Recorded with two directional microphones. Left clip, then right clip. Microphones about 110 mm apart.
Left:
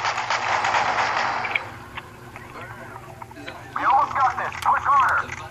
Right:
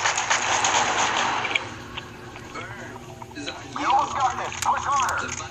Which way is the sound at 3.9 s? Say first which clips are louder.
Left 3 dB; 40° right (ahead or behind).